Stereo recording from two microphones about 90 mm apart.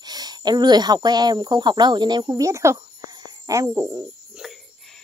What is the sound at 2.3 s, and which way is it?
Speech, 35° right (ahead or behind).